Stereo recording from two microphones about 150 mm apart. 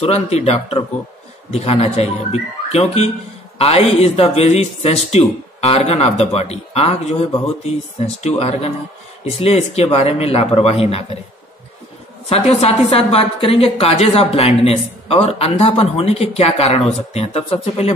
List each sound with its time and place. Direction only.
0.0 s a woman's voice: 45° left (ahead or behind)
12.3 s a woman's voice: 45° left (ahead or behind)